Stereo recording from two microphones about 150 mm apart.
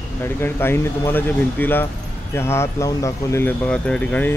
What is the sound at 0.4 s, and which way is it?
Speech, 15° left (ahead or behind).